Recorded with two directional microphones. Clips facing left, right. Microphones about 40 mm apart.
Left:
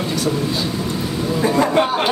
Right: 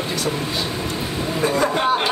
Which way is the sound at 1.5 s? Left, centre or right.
Left.